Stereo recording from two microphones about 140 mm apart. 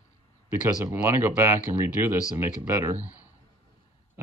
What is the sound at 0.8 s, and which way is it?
Speech, 15° right (ahead or behind).